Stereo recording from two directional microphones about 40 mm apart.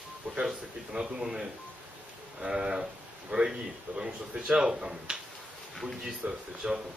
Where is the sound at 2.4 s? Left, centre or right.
Right.